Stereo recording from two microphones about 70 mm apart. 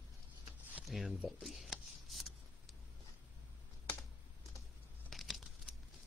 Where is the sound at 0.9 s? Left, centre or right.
Centre.